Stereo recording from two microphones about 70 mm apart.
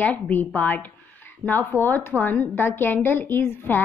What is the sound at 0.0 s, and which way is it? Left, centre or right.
A woman's voice, left.